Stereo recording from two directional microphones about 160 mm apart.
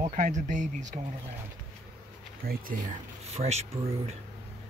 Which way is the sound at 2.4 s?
70° right (ahead or behind).